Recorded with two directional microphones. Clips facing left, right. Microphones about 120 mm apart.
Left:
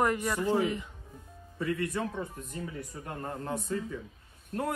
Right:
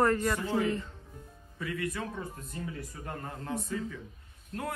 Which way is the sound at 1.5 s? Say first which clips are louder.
Left 4 dB; 25° left (ahead or behind).